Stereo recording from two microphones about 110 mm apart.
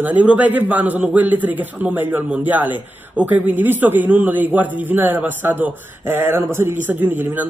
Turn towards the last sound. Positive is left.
turn(degrees=-20)  # may be behind; listen again after turning